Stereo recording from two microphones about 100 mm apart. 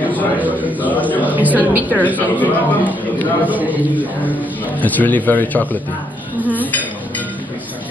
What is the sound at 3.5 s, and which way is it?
Speech, 15° right (ahead or behind).